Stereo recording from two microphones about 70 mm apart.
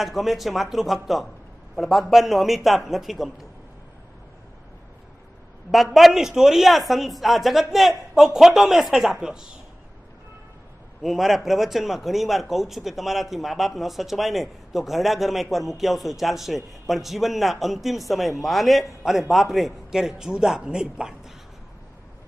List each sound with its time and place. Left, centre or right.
0.0 s a man's voice: centre
5.9 s a man's voice: centre
11.0 s a man's voice: centre